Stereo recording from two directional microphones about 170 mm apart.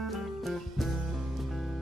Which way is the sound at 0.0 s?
Centre (ahead or behind).